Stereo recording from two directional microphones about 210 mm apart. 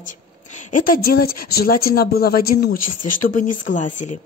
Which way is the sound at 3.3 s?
35° left (ahead or behind).